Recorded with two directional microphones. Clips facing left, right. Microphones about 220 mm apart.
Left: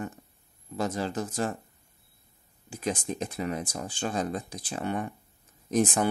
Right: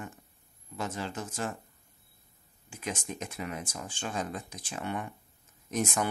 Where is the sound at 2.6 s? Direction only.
35° left (ahead or behind).